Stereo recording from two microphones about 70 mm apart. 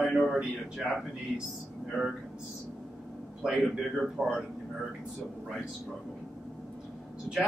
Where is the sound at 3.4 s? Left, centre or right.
Centre.